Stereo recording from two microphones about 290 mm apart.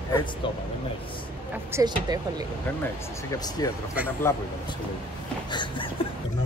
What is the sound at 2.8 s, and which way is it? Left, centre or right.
Speech, centre.